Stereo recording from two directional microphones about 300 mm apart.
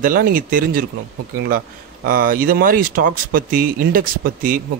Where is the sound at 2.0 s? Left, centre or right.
Right.